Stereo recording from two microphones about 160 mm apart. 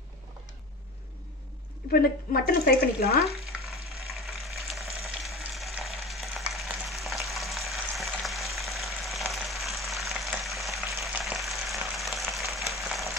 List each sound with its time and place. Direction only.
1.9 s speech: 70° left (ahead or behind)
3.6 s frying: centre (ahead or behind)